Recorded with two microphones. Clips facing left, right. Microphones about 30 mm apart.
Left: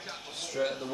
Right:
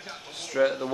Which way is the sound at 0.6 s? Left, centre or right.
Right.